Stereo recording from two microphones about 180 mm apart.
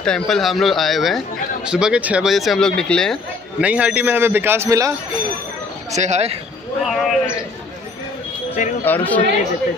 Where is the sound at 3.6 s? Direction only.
5° right (ahead or behind).